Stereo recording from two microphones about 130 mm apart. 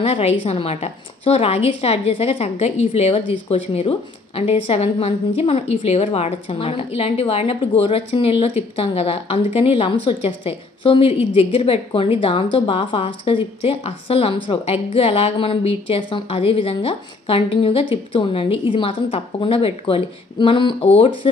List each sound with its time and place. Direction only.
0.0 s a woman's voice: 50° left (ahead or behind)